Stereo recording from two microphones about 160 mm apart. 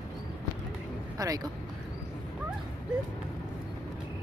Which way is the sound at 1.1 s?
20° right (ahead or behind).